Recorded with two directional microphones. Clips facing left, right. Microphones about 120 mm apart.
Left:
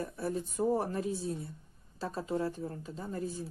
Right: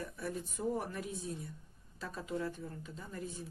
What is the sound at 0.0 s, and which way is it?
Speech, 30° left (ahead or behind).